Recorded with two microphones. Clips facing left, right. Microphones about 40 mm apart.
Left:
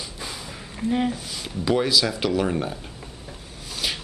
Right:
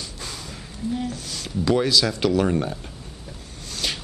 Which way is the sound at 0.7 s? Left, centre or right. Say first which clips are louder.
Left 4 dB; left.